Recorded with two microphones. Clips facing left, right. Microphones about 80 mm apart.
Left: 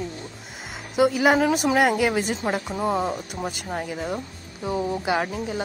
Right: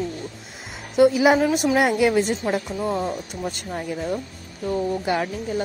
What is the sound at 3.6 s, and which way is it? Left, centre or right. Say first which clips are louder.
Speech: right 3 dB; centre.